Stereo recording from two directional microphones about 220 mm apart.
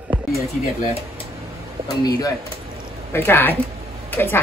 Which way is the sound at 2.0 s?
15° left (ahead or behind).